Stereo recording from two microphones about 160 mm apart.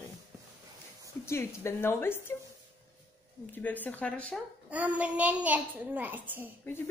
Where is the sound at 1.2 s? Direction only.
15° left (ahead or behind).